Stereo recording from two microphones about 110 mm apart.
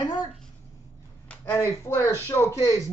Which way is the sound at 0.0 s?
40° left (ahead or behind).